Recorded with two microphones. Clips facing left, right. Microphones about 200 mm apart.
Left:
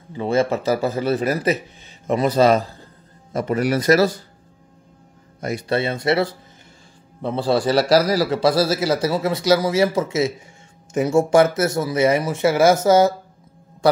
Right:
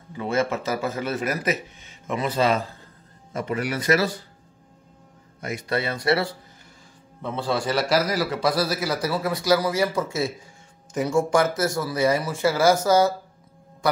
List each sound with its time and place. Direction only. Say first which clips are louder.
0.1 s a man's voice: left 5 dB; 30° left (ahead or behind)
5.4 s a man's voice: left 5 dB; 35° left (ahead or behind)
7.2 s a man's voice: left 6 dB; 35° left (ahead or behind)